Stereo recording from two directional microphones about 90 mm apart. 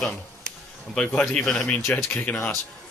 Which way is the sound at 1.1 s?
10° left (ahead or behind).